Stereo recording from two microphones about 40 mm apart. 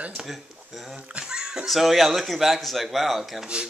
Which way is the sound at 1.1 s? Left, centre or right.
Centre.